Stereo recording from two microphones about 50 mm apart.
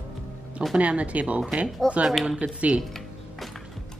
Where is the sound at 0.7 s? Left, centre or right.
Right.